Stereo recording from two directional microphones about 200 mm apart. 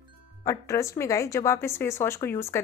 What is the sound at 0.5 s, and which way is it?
A woman's voice, 15° left (ahead or behind).